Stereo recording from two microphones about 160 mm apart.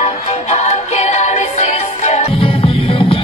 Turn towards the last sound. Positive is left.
turn(degrees=35)  # may be behind; listen again after turning